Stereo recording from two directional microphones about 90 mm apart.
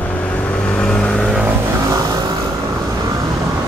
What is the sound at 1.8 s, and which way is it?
Vehicle, 45° right (ahead or behind).